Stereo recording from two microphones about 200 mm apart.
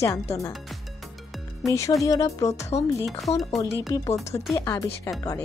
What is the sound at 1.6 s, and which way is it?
Speech, 15° left (ahead or behind).